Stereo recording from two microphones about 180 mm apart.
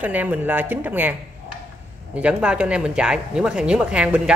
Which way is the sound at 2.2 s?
5° right (ahead or behind).